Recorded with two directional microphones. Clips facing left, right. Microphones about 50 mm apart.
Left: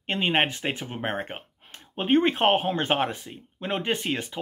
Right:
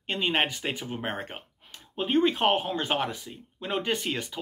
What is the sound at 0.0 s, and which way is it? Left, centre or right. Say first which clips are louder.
Speech: left 3 dB; left.